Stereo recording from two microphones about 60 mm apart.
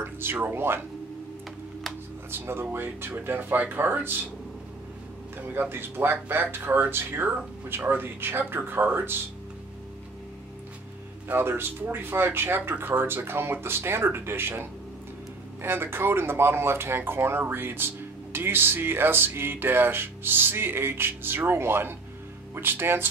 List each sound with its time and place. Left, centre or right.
0.0 s speech: right
2.3 s speech: right
5.5 s speech: right
11.2 s speech: right